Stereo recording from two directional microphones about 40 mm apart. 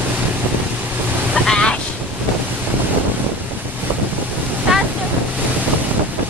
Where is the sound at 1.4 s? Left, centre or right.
Centre.